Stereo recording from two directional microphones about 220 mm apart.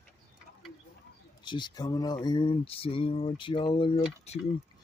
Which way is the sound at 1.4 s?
20° left (ahead or behind).